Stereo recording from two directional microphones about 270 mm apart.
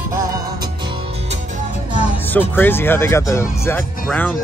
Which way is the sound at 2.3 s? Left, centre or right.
Centre.